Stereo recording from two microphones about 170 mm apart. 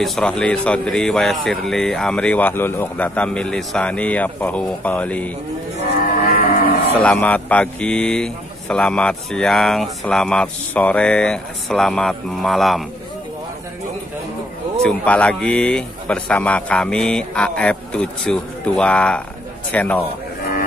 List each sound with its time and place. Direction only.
0.0 s speech: 5° left (ahead or behind)
6.3 s cattle: 60° left (ahead or behind)
6.9 s speech: 10° left (ahead or behind)
14.8 s speech: 5° left (ahead or behind)